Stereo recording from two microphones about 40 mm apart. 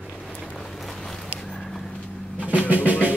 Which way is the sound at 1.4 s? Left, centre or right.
Left.